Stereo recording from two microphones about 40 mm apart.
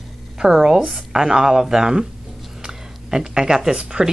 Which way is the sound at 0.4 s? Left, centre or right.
Centre.